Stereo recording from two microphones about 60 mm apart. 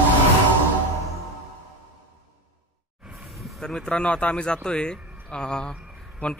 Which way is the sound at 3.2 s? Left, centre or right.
Centre.